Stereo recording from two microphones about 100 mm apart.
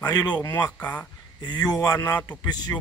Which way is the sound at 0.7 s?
15° left (ahead or behind).